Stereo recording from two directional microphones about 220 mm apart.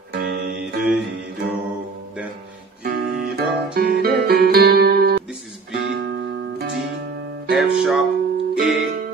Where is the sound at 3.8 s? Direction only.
45° right (ahead or behind).